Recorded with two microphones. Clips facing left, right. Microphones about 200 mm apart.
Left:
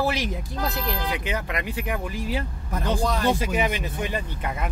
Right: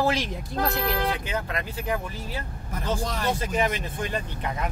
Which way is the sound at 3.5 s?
5° left (ahead or behind).